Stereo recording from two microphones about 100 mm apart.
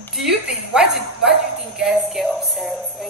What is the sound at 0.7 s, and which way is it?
Speech, 10° right (ahead or behind).